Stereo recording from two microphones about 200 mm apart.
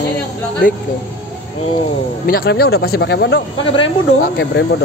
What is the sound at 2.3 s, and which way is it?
Speech, 50° left (ahead or behind).